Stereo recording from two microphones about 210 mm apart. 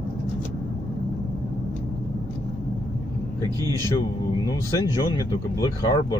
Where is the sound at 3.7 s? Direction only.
15° right (ahead or behind).